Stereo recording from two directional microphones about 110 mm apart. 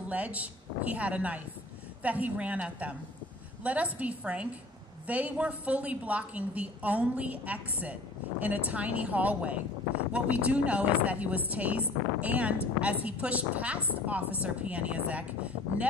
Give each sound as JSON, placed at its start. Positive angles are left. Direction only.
{"t": 0.1, "sound": "a woman's voice", "side_deg": -15}